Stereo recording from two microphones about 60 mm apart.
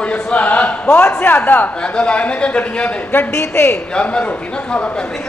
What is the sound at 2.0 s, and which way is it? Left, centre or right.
Speech, centre.